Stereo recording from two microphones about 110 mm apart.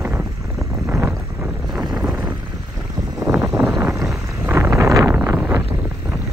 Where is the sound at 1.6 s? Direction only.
Centre (ahead or behind).